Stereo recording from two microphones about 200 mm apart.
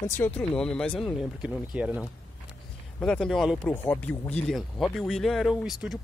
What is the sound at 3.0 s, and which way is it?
Speech, 5° left (ahead or behind).